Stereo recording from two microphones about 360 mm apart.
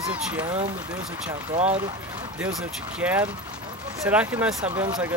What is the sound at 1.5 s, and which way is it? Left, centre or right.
Speech, centre.